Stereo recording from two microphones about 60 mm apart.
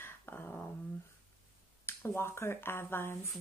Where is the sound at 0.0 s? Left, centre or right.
Left.